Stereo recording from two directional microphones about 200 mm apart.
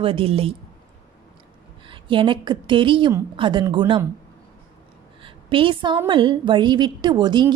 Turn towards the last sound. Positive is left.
turn(degrees=-20)  # may be behind; listen again after turning